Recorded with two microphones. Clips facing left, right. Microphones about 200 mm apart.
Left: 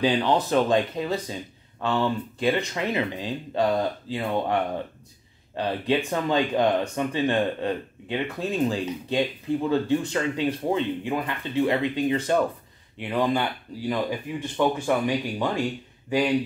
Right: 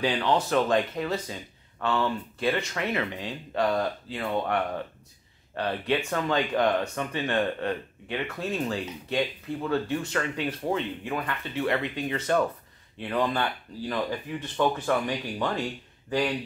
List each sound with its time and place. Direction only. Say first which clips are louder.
0.0 s speech: left 3 dB; 20° left (ahead or behind)